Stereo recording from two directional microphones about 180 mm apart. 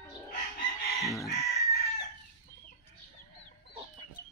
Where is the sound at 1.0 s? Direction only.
15° left (ahead or behind).